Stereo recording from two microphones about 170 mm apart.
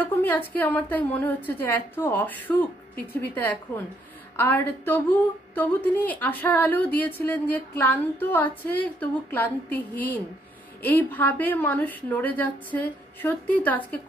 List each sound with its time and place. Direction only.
0.0 s a woman's voice: 10° left (ahead or behind)